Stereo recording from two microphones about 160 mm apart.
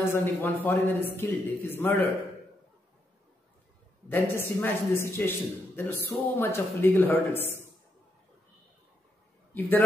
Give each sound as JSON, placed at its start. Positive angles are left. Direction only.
{"t": 0.1, "sound": "a man's voice", "side_deg": 10}
{"t": 4.1, "sound": "a man's voice", "side_deg": 15}
{"t": 9.5, "sound": "a man's voice", "side_deg": 10}